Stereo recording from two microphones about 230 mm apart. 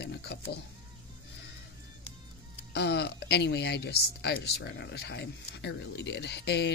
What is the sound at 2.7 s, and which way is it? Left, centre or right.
Speech, left.